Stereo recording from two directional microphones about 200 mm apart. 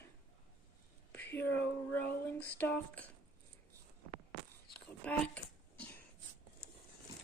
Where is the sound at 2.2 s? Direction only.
10° left (ahead or behind).